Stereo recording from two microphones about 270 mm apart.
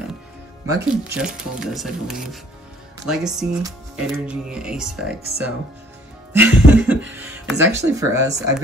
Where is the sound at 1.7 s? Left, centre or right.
Centre.